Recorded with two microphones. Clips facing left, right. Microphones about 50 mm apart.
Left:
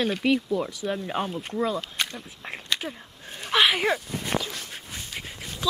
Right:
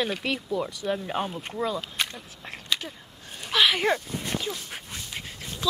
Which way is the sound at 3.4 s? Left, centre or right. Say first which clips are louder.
Left 1 dB; centre.